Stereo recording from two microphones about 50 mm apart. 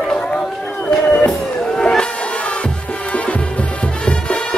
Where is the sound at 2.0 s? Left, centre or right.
Left.